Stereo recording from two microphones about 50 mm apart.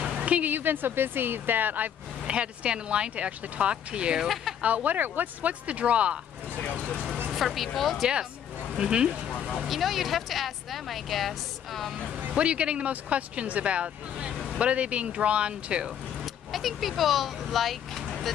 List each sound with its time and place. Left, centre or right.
0.1 s speech: right
2.2 s speech: right
6.5 s speech: left
7.3 s speech: centre
8.7 s speech: centre
9.7 s speech: centre
12.3 s speech: right
16.5 s speech: centre